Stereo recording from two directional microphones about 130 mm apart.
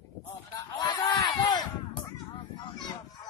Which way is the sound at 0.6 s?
30° left (ahead or behind).